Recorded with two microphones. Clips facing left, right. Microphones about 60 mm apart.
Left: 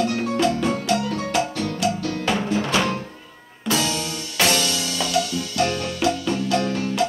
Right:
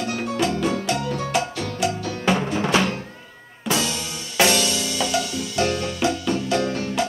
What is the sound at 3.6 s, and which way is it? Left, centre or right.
Music, right.